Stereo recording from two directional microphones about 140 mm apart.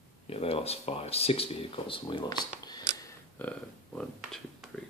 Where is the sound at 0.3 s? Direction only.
45° left (ahead or behind); by 2.8 s 30° left (ahead or behind).